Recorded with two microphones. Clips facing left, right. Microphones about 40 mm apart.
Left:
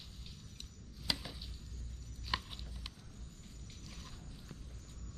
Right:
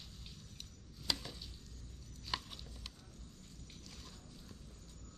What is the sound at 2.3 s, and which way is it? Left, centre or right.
Clip-clop, centre.